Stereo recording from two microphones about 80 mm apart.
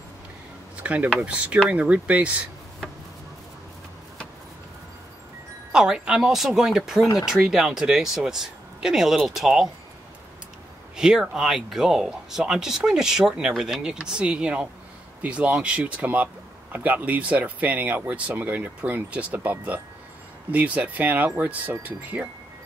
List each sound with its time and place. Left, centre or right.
0.8 s speech: centre
5.7 s speech: centre
11.0 s speech: centre